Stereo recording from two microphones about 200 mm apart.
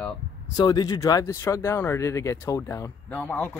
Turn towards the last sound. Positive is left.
turn(degrees=10)  # may be behind; listen again after turning